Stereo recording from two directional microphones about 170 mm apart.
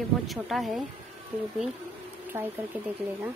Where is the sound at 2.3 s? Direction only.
15° right (ahead or behind).